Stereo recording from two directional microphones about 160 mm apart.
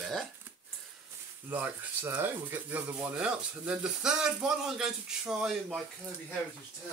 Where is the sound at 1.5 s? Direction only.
10° right (ahead or behind).